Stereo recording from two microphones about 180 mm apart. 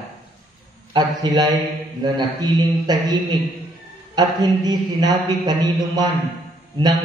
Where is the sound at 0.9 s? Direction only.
25° right (ahead or behind).